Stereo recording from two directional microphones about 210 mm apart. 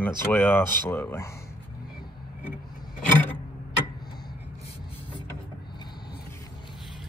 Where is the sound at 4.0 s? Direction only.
20° left (ahead or behind).